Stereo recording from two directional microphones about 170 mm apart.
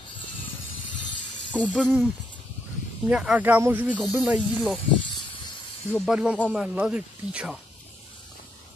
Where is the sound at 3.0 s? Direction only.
5° right (ahead or behind).